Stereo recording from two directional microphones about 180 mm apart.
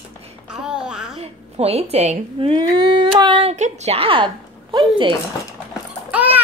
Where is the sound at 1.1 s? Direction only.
35° right (ahead or behind).